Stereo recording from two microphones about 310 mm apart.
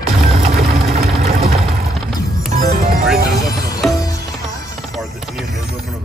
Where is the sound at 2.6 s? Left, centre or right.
Right.